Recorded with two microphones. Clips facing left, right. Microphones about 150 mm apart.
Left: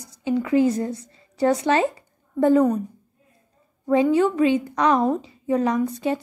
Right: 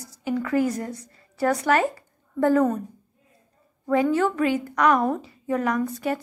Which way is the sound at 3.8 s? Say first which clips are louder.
Left 3 dB; 20° left (ahead or behind).